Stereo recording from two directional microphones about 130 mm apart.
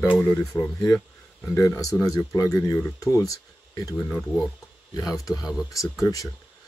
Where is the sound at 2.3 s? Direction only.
25° left (ahead or behind).